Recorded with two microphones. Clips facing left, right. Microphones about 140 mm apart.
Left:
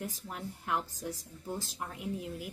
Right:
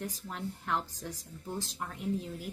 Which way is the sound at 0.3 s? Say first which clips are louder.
Right 1 dB; 10° left (ahead or behind).